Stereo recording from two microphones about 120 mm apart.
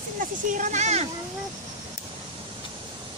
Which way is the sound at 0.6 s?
80° right.